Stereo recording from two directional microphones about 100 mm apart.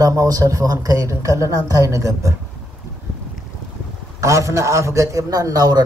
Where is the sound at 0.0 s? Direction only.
35° right (ahead or behind).